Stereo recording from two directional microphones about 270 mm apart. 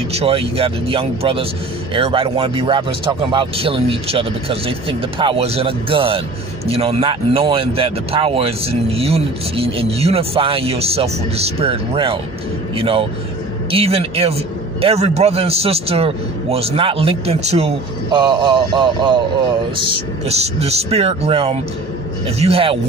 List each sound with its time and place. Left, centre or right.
0.1 s a man's voice: right